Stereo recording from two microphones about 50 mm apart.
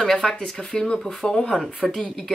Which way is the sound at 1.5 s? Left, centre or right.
Centre.